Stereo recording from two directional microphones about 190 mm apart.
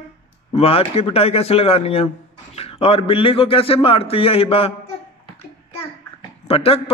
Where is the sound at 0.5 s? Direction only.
30° left (ahead or behind).